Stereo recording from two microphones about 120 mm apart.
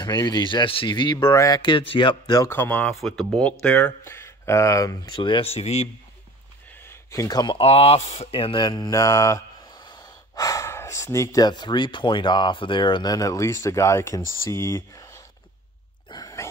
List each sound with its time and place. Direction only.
0.0 s speech: 35° left (ahead or behind)
2.4 s speech: 20° left (ahead or behind)
2.9 s speech: 5° left (ahead or behind); by 4.9 s 25° left (ahead or behind)
5.1 s speech: 45° left (ahead or behind); by 5.9 s 60° left (ahead or behind)
6.8 s a sound: 25° left (ahead or behind)
7.5 s speech: 55° left (ahead or behind); by 9.0 s 35° left (ahead or behind)
9.0 s mantra: 25° left (ahead or behind)
9.8 s speech: 35° left (ahead or behind)
16.1 s a sound: 30° left (ahead or behind)